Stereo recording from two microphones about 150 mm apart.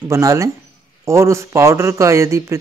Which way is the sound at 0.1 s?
20° right (ahead or behind).